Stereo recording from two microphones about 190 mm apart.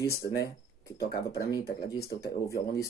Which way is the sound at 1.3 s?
20° left (ahead or behind).